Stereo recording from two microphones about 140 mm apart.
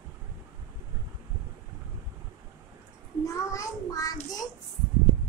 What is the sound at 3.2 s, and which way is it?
Child singing, 25° left (ahead or behind).